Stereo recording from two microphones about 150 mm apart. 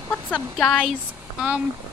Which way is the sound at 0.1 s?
5° left (ahead or behind).